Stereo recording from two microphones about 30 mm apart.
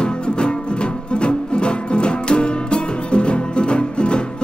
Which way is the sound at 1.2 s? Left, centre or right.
Left.